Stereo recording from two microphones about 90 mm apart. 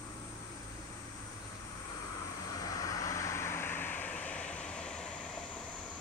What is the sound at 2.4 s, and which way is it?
Vehicle, 40° left (ahead or behind).